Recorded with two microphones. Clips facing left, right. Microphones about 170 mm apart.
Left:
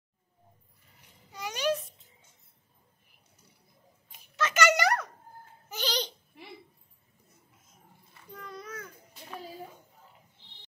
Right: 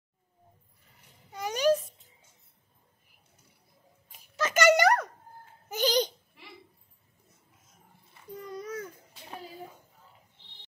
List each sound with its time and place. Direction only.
1.3 s babbling: 50° right (ahead or behind)
4.4 s a sound: 45° right (ahead or behind)
5.7 s babbling: 50° right (ahead or behind)
8.7 s babbling: 20° right (ahead or behind)